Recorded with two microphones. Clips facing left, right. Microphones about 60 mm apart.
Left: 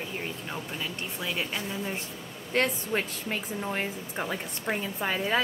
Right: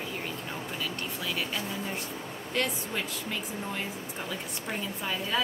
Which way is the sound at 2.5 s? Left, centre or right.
Left.